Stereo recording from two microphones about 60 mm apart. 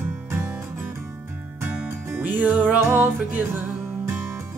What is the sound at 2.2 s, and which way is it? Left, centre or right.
Music, right.